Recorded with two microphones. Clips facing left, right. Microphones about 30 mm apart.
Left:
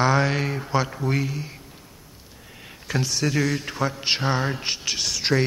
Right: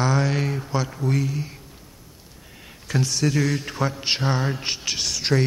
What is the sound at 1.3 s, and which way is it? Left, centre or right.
Speech, centre.